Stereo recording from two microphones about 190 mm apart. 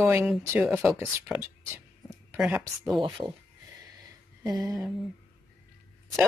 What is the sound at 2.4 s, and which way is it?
Speech, 5° right (ahead or behind).